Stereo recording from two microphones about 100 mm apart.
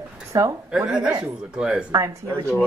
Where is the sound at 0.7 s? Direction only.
10° right (ahead or behind).